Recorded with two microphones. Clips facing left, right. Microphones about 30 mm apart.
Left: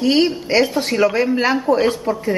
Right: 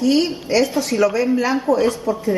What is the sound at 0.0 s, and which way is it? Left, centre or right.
A woman's voice, left.